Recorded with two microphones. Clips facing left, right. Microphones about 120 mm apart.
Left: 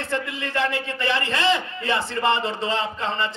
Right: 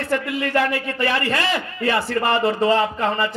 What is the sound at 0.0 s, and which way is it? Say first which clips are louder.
A man's voice: right 5 dB; 25° left (ahead or behind).